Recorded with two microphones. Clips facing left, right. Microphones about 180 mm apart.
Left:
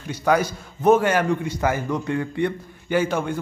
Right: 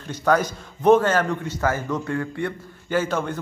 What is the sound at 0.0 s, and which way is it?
A man's voice, 10° left (ahead or behind).